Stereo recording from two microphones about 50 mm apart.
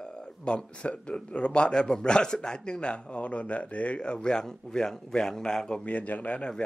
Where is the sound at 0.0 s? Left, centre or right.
Centre.